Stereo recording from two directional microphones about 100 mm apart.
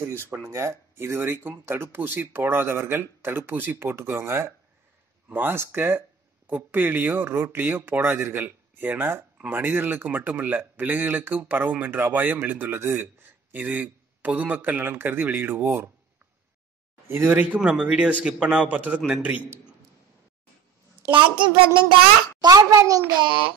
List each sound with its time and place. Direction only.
0.0 s speech: 25° right (ahead or behind)
17.1 s a man's voice: 20° right (ahead or behind)
21.1 s a child's voice: 55° right (ahead or behind)
22.4 s a child's voice: 40° right (ahead or behind)